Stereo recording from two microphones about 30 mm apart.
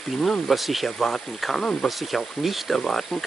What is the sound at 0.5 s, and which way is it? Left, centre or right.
Speech, centre.